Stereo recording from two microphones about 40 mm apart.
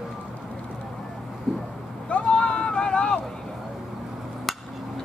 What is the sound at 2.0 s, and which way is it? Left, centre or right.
Boat, left.